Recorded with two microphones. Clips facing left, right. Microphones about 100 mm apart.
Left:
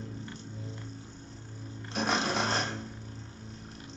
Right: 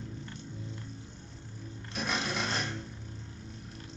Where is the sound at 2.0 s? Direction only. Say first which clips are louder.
Left 4 dB; 30° left (ahead or behind).